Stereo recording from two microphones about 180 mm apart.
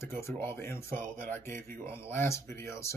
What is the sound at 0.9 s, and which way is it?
Speech, 50° right (ahead or behind).